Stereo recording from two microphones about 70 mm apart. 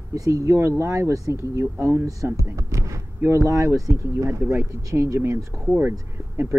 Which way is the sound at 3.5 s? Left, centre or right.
Right.